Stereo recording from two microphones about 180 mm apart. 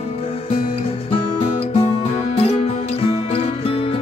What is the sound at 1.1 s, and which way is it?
Music, 30° left (ahead or behind).